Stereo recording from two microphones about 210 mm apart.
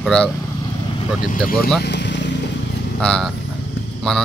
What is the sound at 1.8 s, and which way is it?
Vehicle, 55° left (ahead or behind).